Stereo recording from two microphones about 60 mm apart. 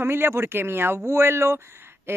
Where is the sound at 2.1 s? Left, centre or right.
Right.